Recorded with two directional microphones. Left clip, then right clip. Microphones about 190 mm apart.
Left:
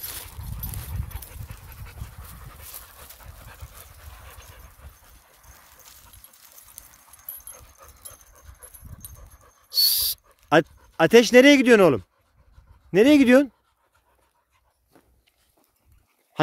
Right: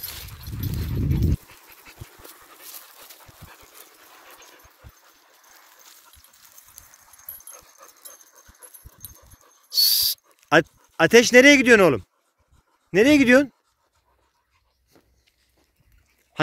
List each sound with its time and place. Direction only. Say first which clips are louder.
1.5 s dog: right 1 dB; 55° left (ahead or behind)
4.0 s a sound: right 1 dB; 40° left (ahead or behind)
6.8 s dog: right 1 dB; 30° left (ahead or behind)
8.1 s dog: right 1 dB; 30° right (ahead or behind)
9.8 s dog: right 2 dB; 5° left (ahead or behind)
10.5 s speech: right 1 dB; 5° left (ahead or behind)